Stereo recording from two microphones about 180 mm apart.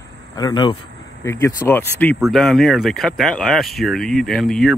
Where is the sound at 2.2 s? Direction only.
Centre (ahead or behind).